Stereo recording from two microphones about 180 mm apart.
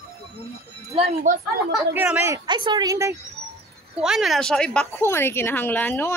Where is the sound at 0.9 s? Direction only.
35° right (ahead or behind).